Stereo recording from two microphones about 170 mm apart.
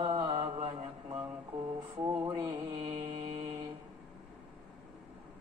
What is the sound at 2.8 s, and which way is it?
Mantra, 40° right (ahead or behind).